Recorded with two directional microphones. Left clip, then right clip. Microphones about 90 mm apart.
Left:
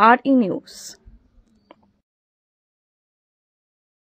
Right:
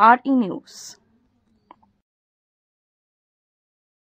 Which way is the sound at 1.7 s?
5° left (ahead or behind).